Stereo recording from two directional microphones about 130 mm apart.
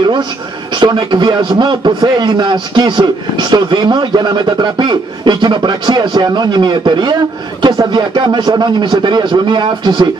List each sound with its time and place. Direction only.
0.7 s a man's voice: 35° right (ahead or behind)